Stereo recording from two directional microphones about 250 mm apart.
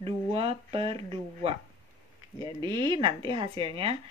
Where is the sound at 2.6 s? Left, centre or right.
Centre.